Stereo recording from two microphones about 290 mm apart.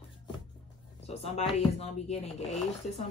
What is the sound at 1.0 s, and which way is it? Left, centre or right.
Speech, left.